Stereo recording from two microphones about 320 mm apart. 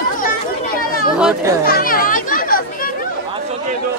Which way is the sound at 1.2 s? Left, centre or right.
Centre.